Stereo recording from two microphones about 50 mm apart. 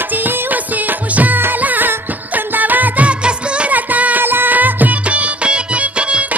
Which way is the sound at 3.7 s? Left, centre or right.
Right.